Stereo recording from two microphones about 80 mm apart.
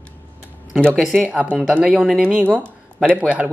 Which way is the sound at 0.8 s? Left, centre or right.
Centre.